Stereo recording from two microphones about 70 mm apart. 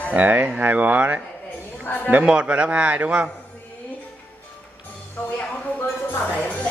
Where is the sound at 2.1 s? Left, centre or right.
Centre.